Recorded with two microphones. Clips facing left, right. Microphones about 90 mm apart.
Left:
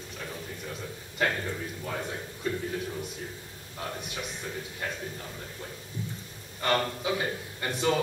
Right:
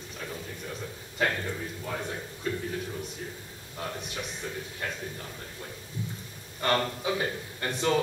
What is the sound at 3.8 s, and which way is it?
Speech, centre (ahead or behind).